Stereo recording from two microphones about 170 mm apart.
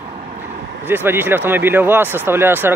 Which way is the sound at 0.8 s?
10° right (ahead or behind).